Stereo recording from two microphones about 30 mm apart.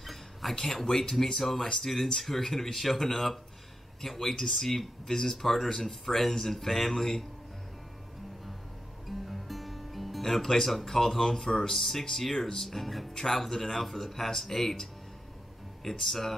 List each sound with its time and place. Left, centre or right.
0.0 s a sound: centre
0.8 s speech: centre
9.0 s music: centre
10.9 s speech: centre